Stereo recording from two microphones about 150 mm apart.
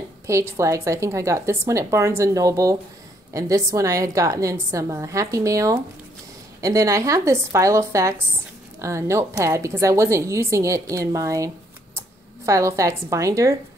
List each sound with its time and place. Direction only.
0.3 s a woman's voice: 20° right (ahead or behind)